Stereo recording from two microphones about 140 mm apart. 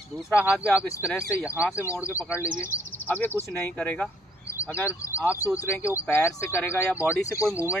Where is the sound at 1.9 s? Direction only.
20° left (ahead or behind).